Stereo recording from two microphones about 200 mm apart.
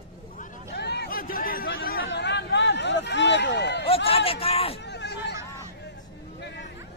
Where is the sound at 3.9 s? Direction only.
30° left (ahead or behind).